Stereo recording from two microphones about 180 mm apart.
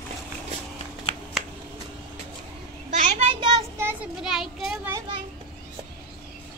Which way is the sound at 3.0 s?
40° right (ahead or behind).